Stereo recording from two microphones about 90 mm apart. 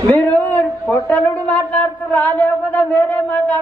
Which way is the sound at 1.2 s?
15° left (ahead or behind).